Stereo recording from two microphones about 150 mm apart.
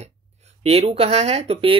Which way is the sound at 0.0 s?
45° right (ahead or behind).